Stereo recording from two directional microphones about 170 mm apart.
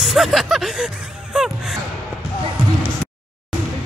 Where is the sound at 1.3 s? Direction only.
5° right (ahead or behind).